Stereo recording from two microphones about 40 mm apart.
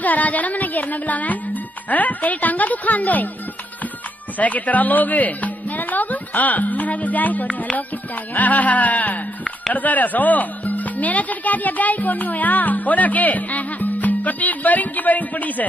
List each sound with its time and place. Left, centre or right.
0.0 s speech: left
4.4 s speech: left
8.4 s music: left
9.8 s speech: left